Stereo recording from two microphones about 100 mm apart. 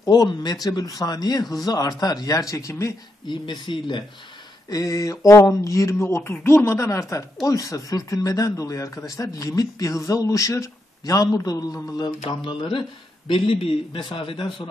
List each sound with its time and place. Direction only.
0.0 s speech: 40° left (ahead or behind)
3.3 s speech: 50° left (ahead or behind)
4.6 s speech: 35° left (ahead or behind)
12.3 s a man's voice: 55° left (ahead or behind)